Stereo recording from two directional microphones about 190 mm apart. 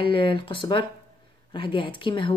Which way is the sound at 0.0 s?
25° left (ahead or behind).